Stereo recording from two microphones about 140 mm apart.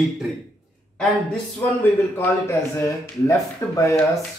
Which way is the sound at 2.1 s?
15° left (ahead or behind).